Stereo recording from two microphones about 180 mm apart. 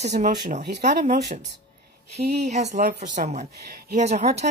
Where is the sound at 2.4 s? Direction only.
40° right (ahead or behind).